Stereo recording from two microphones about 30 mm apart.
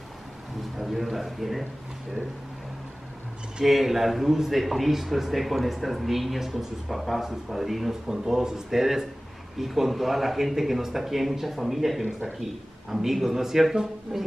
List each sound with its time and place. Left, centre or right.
0.9 s speech: centre
3.6 s speech: centre
14.1 s speech: right